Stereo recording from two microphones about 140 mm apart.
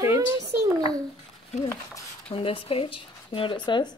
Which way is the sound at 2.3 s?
40° left (ahead or behind).